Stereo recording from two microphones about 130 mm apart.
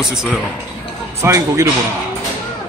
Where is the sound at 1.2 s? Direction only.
20° right (ahead or behind).